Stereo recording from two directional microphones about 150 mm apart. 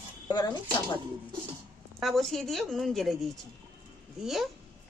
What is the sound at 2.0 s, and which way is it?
Speech, centre (ahead or behind).